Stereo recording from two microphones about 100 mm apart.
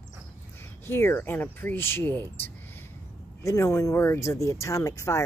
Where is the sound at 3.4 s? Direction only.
30° left (ahead or behind).